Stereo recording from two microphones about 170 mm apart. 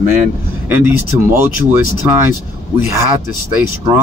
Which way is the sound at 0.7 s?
10° right (ahead or behind).